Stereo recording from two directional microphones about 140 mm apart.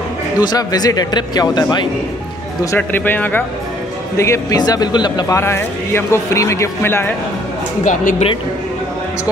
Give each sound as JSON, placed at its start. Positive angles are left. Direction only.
{"t": 0.4, "sound": "a man's voice", "side_deg": 30}
{"t": 2.6, "sound": "a man's voice", "side_deg": 15}
{"t": 5.4, "sound": "a man's voice", "side_deg": 20}
{"t": 7.8, "sound": "speech", "side_deg": 70}